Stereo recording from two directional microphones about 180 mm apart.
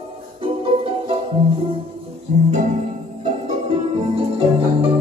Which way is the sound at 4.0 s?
35° right (ahead or behind).